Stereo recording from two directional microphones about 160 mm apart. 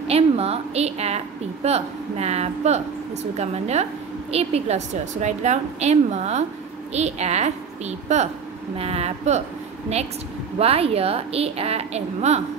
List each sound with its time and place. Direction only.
0.1 s a woman's voice: 40° right (ahead or behind)
10.6 s a woman's voice: 40° right (ahead or behind)